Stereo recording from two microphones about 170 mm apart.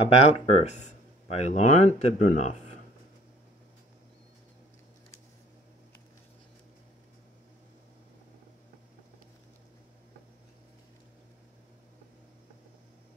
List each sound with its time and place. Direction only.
0.0 s speech: 40° left (ahead or behind)